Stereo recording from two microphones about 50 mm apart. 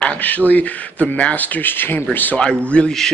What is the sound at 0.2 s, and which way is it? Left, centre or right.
Speech, left.